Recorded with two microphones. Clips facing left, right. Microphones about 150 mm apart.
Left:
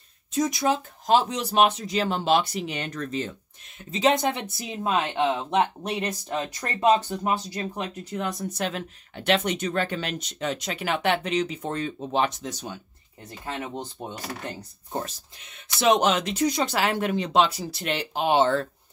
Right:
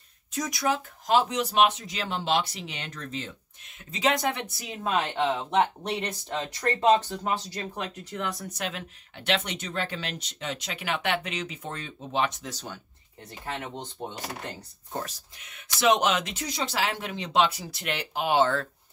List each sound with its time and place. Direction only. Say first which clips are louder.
0.3 s speech: left 4 dB; 25° left (ahead or behind); by 3.3 s 45° left (ahead or behind)
3.9 s speech: left 4 dB; 25° left (ahead or behind)
8.5 s speech: left 5 dB; 40° left (ahead or behind)
12.4 s speech: left 4 dB; 20° left (ahead or behind)
14.0 s speech: even; 10° left (ahead or behind)
14.9 s speech: left 3 dB; 25° left (ahead or behind)